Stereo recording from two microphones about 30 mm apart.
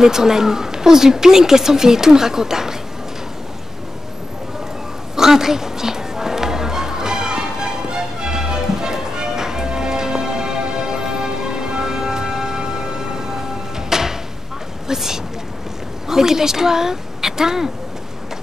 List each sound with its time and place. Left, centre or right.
0.0 s speech: centre
5.1 s music: centre
14.9 s speech: centre